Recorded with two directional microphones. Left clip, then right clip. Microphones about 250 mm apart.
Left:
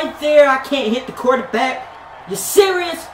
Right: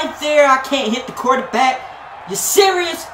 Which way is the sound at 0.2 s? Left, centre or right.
Centre.